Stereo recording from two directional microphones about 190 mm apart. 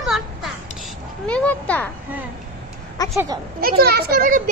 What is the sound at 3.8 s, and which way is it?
Speech, 55° right (ahead or behind).